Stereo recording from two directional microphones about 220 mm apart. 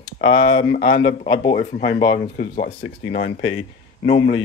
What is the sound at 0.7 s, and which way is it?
Speech, 40° left (ahead or behind).